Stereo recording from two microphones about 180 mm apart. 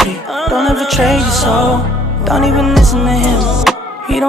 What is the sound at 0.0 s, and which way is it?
Music, centre (ahead or behind).